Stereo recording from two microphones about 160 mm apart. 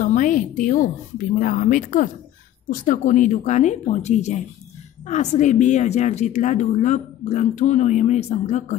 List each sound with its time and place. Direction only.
0.0 s a woman's voice: 55° left (ahead or behind)